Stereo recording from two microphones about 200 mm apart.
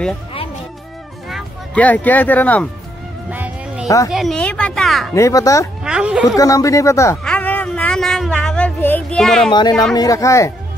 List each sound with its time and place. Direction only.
1.3 s speech: 5° left (ahead or behind)
3.3 s music: 5° right (ahead or behind)
3.8 s speech: 15° left (ahead or behind)
4.1 s speech: centre (ahead or behind)
5.1 s speech: 15° left (ahead or behind)
5.9 s a woman's voice: 5° right (ahead or behind)
6.3 s speech: 15° left (ahead or behind)
7.2 s a sound: 5° left (ahead or behind)
9.5 s speech: 20° left (ahead or behind)